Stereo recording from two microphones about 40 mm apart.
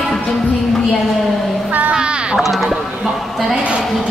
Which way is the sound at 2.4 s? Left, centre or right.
Centre.